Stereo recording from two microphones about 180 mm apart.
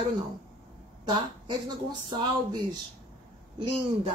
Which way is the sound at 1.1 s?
25° right (ahead or behind).